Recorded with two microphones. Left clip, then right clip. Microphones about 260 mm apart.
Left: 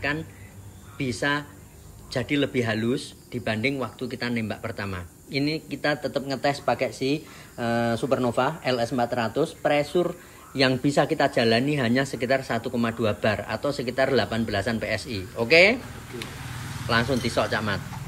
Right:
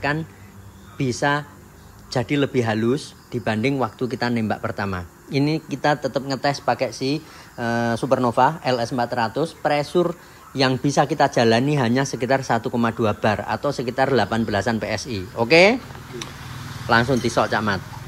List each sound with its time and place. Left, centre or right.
0.9 s speech: centre